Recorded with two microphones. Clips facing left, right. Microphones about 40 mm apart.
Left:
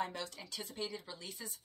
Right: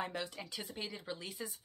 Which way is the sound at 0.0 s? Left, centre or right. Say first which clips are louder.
Even; right.